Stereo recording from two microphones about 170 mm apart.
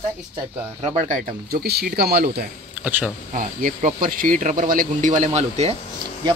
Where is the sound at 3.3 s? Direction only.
50° right (ahead or behind).